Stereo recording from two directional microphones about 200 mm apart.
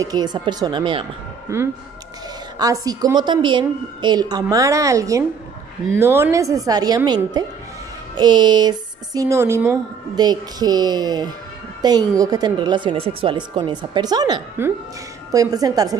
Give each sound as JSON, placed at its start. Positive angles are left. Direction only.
{"t": 0.0, "sound": "speech", "side_deg": -20}
{"t": 1.5, "sound": "a woman's voice", "side_deg": -15}